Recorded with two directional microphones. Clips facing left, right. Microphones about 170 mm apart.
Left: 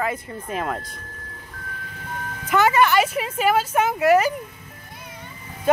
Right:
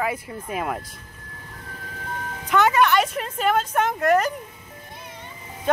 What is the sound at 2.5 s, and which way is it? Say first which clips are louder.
A woman's voice: left 1 dB; centre (ahead or behind).